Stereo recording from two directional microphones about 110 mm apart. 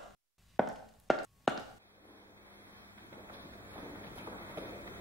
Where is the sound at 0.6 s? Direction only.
Centre (ahead or behind).